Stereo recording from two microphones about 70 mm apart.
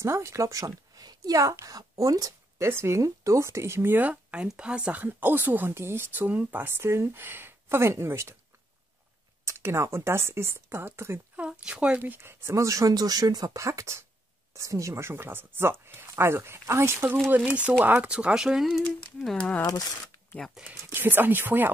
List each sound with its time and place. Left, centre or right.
0.0 s speech: right
2.6 s speech: right
4.1 s speech: centre
4.9 s speech: right
6.8 s speech: right
9.4 s speech: right
11.3 s speech: centre
12.0 s speech: right
13.7 s speech: right
17.5 s speech: right
18.0 s speech: centre
20.3 s speech: left
20.6 s speech: right